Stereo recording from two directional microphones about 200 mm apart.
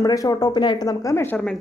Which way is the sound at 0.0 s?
15° left (ahead or behind).